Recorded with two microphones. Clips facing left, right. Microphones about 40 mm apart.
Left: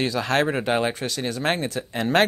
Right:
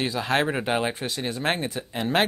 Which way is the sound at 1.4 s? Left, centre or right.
Centre.